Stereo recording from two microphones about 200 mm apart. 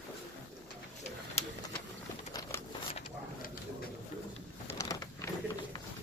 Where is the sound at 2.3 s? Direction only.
20° left (ahead or behind).